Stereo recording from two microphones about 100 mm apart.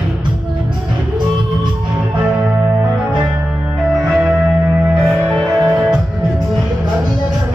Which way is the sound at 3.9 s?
10° right (ahead or behind).